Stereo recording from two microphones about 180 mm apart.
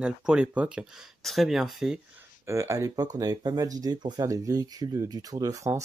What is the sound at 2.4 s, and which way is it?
Speech, 15° right (ahead or behind).